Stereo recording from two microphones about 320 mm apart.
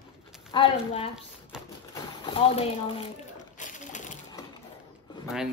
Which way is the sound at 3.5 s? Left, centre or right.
Left.